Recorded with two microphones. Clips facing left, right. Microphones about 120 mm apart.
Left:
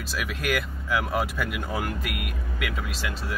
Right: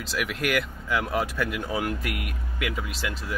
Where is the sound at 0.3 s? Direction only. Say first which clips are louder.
Even; centre (ahead or behind).